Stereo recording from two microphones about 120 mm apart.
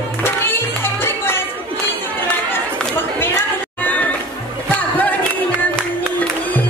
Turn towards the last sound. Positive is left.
turn(degrees=15)  # may be behind; listen again after turning